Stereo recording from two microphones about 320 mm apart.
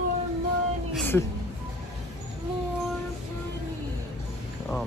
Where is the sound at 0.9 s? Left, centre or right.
Centre.